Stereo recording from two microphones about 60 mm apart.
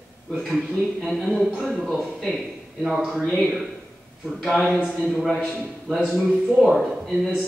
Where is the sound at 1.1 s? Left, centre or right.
Centre.